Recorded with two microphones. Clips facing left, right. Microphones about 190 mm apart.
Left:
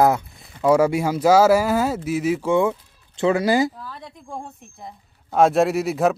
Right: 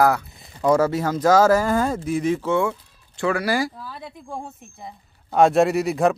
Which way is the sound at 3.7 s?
5° right (ahead or behind).